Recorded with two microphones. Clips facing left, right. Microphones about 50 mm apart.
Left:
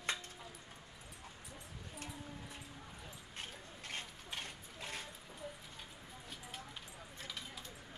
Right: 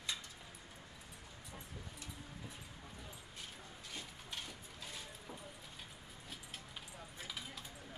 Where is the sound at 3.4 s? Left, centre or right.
Left.